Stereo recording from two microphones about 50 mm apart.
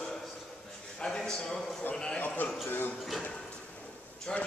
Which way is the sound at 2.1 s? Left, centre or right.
Left.